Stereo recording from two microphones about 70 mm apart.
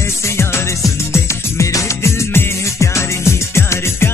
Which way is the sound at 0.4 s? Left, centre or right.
Left.